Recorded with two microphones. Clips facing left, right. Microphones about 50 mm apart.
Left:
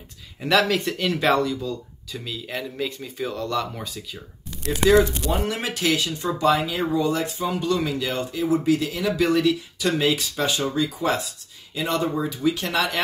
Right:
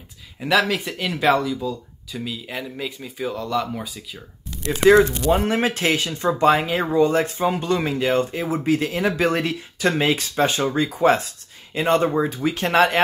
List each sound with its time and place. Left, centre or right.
0.4 s speech: centre
5.3 s speech: right